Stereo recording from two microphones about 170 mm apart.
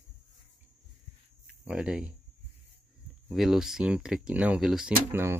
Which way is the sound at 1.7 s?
5° right (ahead or behind).